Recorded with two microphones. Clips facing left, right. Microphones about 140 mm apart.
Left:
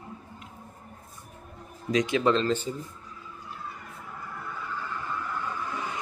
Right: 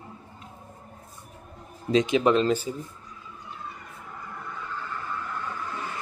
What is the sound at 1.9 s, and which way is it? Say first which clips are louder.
Speech: right 3 dB; 25° right (ahead or behind).